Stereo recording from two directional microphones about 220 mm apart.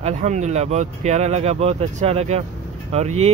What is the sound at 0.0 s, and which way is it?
Speech, 30° right (ahead or behind).